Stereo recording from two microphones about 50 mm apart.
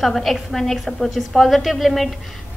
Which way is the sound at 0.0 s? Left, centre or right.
Centre.